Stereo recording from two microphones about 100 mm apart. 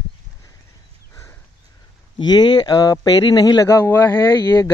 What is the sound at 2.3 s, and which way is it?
Speech, 45° left (ahead or behind).